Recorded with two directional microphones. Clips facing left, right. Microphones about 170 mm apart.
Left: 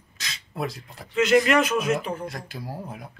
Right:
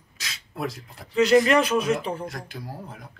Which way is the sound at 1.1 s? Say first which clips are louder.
Right 1 dB; 35° right (ahead or behind).